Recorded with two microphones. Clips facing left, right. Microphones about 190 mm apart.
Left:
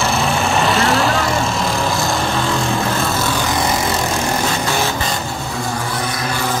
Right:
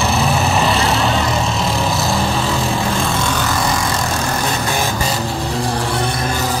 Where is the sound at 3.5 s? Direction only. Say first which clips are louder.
Left 1 dB; 20° left (ahead or behind).